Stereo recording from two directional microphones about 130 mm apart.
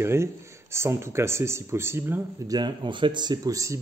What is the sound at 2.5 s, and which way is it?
Speech, 35° right (ahead or behind).